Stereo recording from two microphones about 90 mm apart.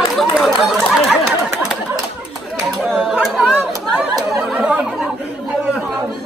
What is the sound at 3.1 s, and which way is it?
Chatter, 10° right (ahead or behind).